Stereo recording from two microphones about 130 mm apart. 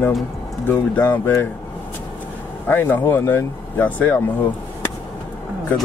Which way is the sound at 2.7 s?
15° left (ahead or behind).